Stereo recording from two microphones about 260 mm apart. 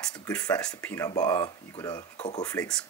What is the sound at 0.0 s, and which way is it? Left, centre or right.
Speech, centre.